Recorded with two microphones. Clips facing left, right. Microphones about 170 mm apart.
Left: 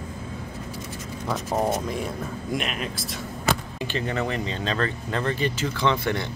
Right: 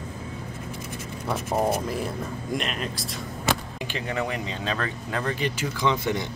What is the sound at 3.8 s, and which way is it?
Speech, 10° right (ahead or behind).